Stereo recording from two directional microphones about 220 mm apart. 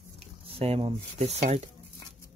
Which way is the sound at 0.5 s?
25° right (ahead or behind).